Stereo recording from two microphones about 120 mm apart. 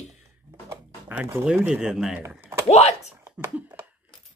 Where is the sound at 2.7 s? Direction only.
65° left (ahead or behind).